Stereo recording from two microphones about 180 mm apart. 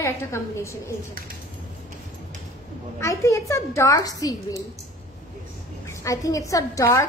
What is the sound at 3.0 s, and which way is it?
A woman's voice, 15° left (ahead or behind).